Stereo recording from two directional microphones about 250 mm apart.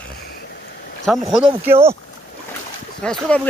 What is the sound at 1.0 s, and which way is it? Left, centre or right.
Speech, centre.